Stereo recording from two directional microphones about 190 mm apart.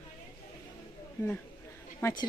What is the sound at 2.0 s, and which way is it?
Speech, 15° left (ahead or behind).